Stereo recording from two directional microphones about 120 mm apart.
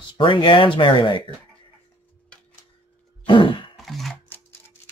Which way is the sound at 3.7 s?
Centre (ahead or behind).